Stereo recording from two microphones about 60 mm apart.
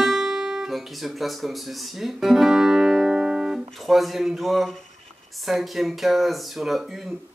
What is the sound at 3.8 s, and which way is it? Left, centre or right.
Speech, centre.